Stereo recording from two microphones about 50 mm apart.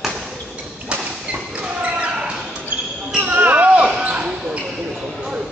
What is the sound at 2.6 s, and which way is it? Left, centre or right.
Basketball bounce, right.